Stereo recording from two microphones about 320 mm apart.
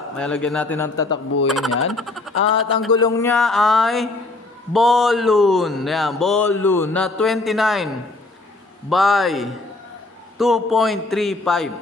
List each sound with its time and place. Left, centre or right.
0.2 s speech: centre
2.3 s speech: left
2.9 s speech: centre